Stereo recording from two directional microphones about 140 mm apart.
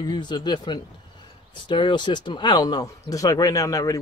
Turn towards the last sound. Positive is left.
turn(degrees=25)  # may be behind; listen again after turning